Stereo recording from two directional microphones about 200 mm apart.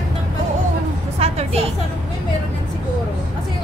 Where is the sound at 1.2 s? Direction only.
30° right (ahead or behind).